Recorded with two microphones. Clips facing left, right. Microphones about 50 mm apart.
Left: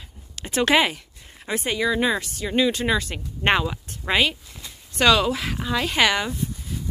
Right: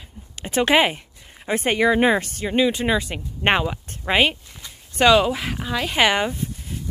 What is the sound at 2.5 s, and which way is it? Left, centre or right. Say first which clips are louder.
Speech: right 1 dB; centre.